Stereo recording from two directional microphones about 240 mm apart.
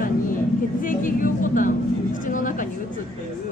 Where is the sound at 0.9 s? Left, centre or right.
Left.